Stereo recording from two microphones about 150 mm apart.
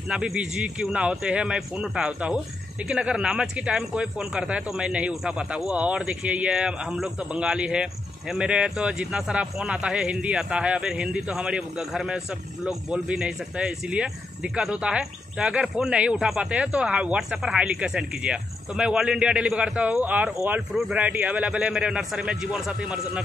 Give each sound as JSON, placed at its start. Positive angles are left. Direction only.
{"t": 0.1, "sound": "speech", "side_deg": -5}